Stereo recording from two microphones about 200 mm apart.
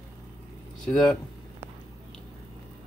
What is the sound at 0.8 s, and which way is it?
Speech, 5° left (ahead or behind).